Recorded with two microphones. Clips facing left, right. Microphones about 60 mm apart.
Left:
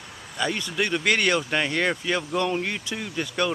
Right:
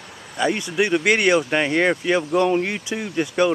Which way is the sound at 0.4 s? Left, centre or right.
Centre.